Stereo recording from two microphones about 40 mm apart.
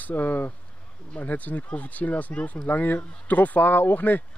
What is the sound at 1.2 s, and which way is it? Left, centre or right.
Speech, left.